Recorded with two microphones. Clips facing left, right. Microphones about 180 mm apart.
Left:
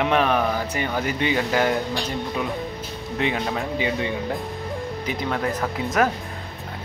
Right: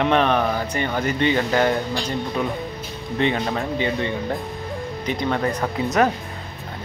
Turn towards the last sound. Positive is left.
turn(degrees=0)  # may be behind; listen again after turning